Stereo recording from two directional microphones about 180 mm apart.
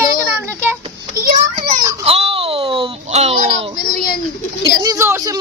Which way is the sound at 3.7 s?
55° left (ahead or behind).